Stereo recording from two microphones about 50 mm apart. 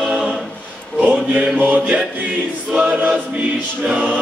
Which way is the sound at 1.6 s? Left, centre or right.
Right.